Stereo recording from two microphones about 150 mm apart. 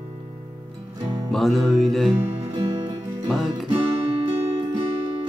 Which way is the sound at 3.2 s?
Centre (ahead or behind).